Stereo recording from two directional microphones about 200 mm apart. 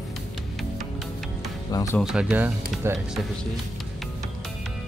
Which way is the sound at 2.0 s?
Centre (ahead or behind).